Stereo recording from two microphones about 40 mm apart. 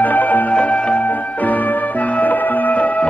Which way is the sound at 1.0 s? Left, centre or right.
Left.